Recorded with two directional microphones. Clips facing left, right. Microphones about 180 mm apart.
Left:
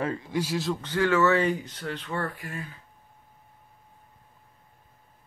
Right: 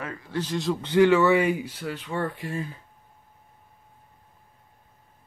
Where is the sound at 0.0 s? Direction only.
30° left (ahead or behind).